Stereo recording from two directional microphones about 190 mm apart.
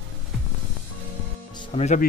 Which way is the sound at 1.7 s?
35° left (ahead or behind).